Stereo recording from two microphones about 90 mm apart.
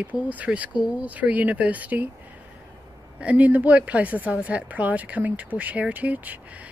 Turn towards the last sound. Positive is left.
turn(degrees=-15)  # may be behind; listen again after turning